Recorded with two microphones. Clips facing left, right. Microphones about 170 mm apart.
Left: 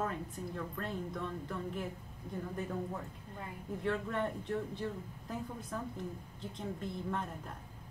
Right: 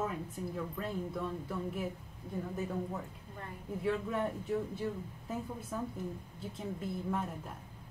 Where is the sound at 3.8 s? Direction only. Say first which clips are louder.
Right 2 dB; 5° right (ahead or behind).